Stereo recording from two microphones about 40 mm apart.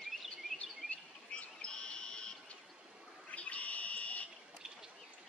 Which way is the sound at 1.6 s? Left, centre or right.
Left.